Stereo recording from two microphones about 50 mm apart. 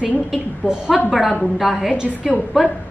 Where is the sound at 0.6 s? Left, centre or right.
Centre.